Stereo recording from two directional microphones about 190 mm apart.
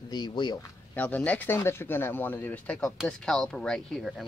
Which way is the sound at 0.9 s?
10° left (ahead or behind).